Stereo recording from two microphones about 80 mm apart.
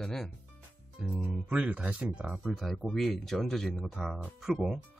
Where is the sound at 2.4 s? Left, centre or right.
Centre.